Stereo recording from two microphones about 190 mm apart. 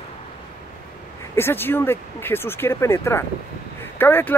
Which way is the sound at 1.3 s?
10° left (ahead or behind).